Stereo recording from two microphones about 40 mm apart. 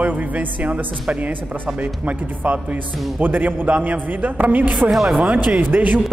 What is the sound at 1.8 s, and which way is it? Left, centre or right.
Speech, right.